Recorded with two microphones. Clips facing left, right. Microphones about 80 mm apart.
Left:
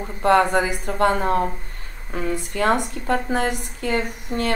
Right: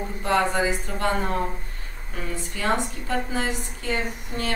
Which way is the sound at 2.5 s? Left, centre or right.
Left.